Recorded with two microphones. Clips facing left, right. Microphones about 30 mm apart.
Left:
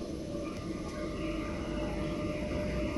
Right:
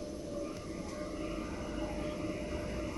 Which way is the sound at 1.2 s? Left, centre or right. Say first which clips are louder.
Left 4 dB; left.